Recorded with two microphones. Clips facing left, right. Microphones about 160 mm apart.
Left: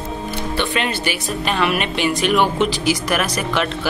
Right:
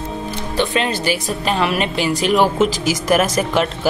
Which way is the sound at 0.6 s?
35° right (ahead or behind).